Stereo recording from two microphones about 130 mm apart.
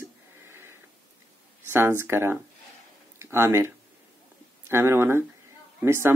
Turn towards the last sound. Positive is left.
turn(degrees=-20)  # may be behind; listen again after turning